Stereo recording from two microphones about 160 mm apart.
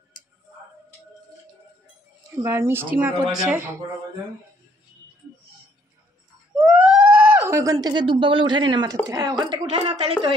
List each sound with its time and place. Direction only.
2.3 s speech: 15° right (ahead or behind)
6.5 s a sound: 5° right (ahead or behind)
7.4 s speech: 20° right (ahead or behind); by 10.3 s 40° right (ahead or behind)